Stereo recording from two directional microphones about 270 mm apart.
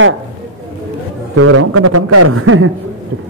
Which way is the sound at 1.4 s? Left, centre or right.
Right.